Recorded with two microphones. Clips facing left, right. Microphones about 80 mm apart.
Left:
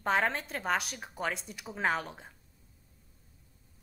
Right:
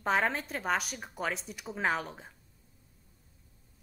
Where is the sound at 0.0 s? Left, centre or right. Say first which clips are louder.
Even; centre.